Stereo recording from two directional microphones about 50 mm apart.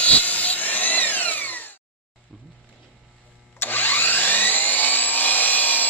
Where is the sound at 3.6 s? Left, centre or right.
Left.